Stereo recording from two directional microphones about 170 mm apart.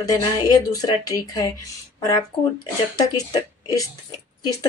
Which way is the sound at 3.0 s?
20° left (ahead or behind).